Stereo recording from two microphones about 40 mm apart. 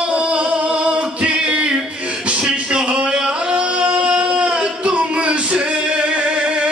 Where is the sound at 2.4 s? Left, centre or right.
Right.